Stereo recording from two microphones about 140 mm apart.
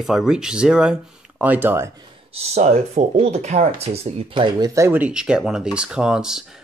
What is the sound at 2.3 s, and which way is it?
Speech, 55° right (ahead or behind).